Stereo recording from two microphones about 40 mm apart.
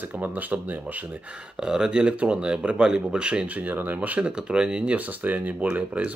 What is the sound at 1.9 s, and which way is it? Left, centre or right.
Speech, right.